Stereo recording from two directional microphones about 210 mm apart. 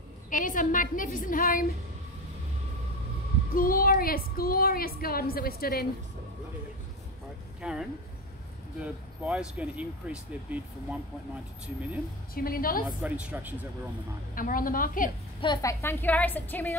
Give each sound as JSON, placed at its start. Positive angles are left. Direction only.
{"t": 0.3, "sound": "a woman's voice", "side_deg": 40}
{"t": 3.5, "sound": "a woman's voice", "side_deg": 45}
{"t": 7.6, "sound": "speech", "side_deg": -5}
{"t": 12.4, "sound": "a woman's voice", "side_deg": 45}
{"t": 13.0, "sound": "speech", "side_deg": -5}
{"t": 14.3, "sound": "a woman's voice", "side_deg": 40}
{"t": 15.4, "sound": "a woman's voice", "side_deg": 20}